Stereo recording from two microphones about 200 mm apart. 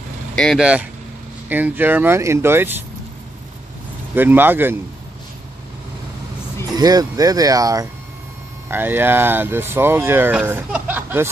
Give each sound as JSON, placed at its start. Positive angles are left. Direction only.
{"t": 0.4, "sound": "speech", "side_deg": 0}
{"t": 4.1, "sound": "speech", "side_deg": -10}
{"t": 6.8, "sound": "speech", "side_deg": -20}